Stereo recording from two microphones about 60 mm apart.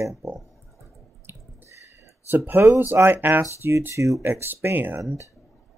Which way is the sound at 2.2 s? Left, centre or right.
Right.